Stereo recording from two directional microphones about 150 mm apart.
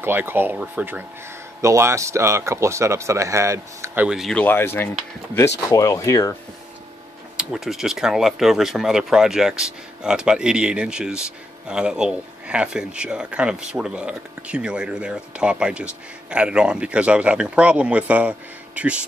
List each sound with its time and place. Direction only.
0.0 s speech: 15° right (ahead or behind)
4.4 s speech: 15° left (ahead or behind)
7.3 s speech: centre (ahead or behind)